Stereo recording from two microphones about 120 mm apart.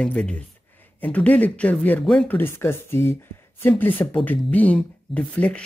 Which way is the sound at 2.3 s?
20° left (ahead or behind).